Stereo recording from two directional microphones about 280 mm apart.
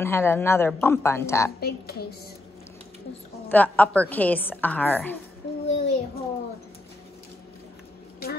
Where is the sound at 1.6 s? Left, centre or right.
Left.